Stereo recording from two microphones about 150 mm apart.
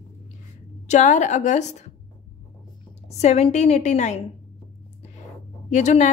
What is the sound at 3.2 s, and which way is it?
Speech, 50° left (ahead or behind).